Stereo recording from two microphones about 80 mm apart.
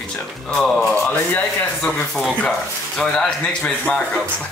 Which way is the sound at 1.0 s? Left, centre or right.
Left.